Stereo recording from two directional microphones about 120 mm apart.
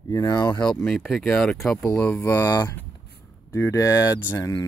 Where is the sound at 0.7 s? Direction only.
5° left (ahead or behind).